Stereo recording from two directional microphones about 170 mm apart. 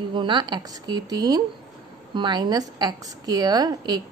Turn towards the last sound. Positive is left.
turn(degrees=-25)  # may be behind; listen again after turning